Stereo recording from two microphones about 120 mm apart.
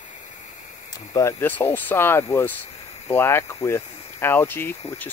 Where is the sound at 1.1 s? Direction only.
30° left (ahead or behind).